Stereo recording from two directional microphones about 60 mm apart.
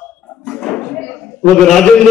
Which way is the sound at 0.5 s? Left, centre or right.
Centre.